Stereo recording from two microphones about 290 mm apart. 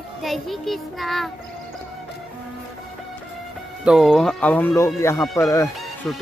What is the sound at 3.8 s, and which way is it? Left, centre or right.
Speech, centre.